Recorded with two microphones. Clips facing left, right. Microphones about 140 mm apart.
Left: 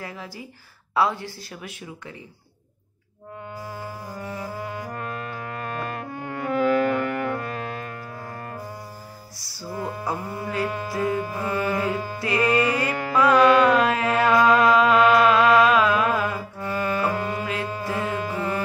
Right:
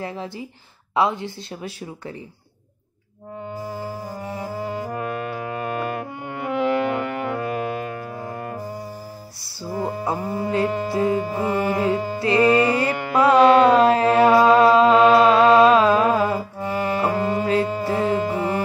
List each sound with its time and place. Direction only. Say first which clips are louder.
0.0 s speech: right 6 dB; 25° right (ahead or behind)
3.7 s music: right 4 dB; 30° right (ahead or behind)
4.9 s music: right 5 dB; 20° right (ahead or behind)
9.6 s mantra: right 5 dB; 25° right (ahead or behind)
17.6 s music: right 6 dB; 30° right (ahead or behind)